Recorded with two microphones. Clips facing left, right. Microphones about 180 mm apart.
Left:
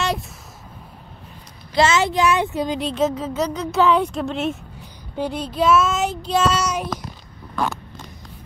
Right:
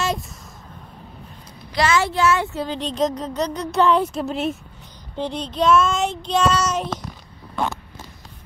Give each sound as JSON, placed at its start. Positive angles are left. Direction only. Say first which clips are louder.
{"t": 1.8, "sound": "child singing", "louder": "left 2 dB", "side_deg": 20}
{"t": 2.9, "sound": "a woman's voice", "louder": "left 1 dB", "side_deg": 5}
{"t": 5.1, "sound": "child singing", "louder": "left 1 dB", "side_deg": 5}